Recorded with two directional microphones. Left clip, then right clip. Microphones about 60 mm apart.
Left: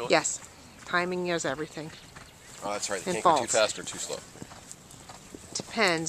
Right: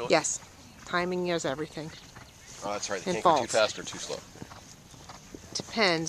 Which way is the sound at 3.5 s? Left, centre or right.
Right.